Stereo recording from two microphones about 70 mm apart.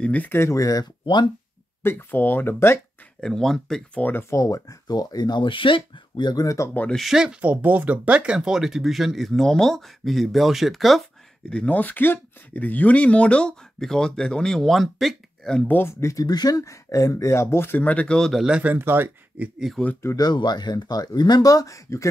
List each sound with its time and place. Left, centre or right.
0.0 s speech: left
0.3 s speech: left
1.8 s speech: left
3.2 s speech: centre
3.9 s speech: left
4.3 s speech: left
7.0 s speech: centre
7.4 s speech: right; by 11.0 s centre
11.5 s speech: centre
16.0 s speech: left
16.3 s speech: left; by 18.4 s centre
18.6 s speech: right
19.8 s speech: centre
20.2 s speech: left